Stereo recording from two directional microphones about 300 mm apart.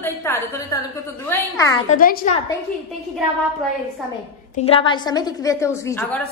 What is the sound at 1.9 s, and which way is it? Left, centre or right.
Speech, left.